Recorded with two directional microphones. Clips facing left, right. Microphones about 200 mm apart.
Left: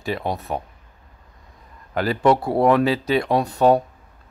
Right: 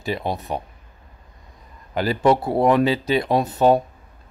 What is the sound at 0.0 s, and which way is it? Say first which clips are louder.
Speech: even; centre (ahead or behind).